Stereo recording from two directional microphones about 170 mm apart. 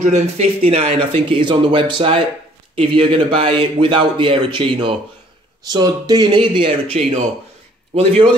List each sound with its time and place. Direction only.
0.0 s a man's voice: 40° right (ahead or behind)